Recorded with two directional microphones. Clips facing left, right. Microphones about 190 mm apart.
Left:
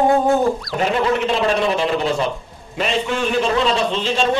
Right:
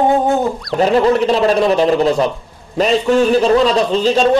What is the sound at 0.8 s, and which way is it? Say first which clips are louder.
A man's voice: right 8 dB; 35° right (ahead or behind).